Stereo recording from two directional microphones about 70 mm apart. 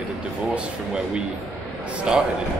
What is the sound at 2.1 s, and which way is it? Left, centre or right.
Speech, centre.